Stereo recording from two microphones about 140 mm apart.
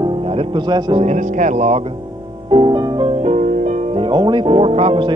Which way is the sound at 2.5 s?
35° right (ahead or behind).